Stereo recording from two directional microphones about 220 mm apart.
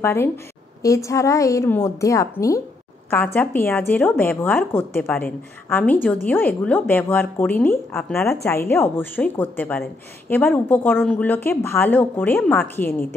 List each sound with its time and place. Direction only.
0.0 s a woman's voice: 10° left (ahead or behind)